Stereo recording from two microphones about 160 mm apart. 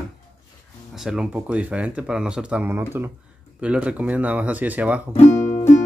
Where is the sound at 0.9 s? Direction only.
5° right (ahead or behind).